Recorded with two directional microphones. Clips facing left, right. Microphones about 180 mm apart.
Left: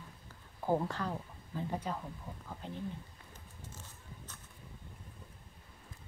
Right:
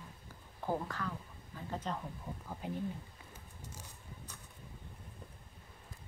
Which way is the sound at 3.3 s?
10° right (ahead or behind).